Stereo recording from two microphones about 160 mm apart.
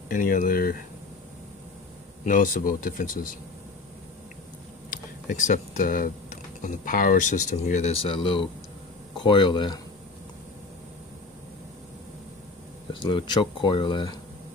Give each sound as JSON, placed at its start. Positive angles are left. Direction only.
{"t": 0.1, "sound": "speech", "side_deg": 60}
{"t": 2.2, "sound": "speech", "side_deg": 60}
{"t": 4.9, "sound": "speech", "side_deg": 50}
{"t": 13.0, "sound": "speech", "side_deg": 30}